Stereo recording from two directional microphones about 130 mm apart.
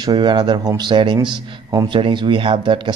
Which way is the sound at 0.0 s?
35° right (ahead or behind).